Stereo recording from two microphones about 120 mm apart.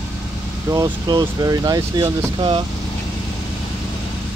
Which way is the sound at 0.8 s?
35° right (ahead or behind).